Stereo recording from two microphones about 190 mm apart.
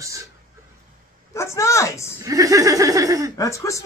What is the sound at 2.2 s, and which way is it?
A man's voice, 20° right (ahead or behind).